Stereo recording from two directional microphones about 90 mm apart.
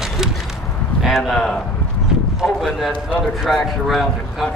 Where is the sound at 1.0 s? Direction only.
Centre (ahead or behind).